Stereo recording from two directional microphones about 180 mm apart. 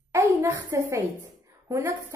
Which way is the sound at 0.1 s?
15° right (ahead or behind).